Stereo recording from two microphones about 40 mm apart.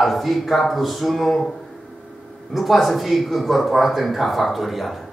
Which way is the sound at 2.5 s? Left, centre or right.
Centre.